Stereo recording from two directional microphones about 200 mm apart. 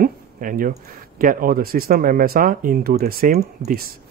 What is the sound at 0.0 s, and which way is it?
Speech, 45° right (ahead or behind).